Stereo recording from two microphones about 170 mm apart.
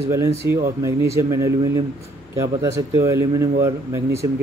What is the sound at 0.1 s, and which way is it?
Speech, 15° right (ahead or behind).